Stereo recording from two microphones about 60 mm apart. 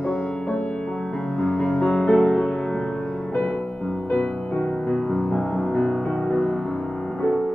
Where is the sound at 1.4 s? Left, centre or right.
Centre.